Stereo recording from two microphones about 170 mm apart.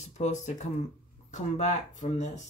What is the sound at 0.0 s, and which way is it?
Speech, 45° left (ahead or behind).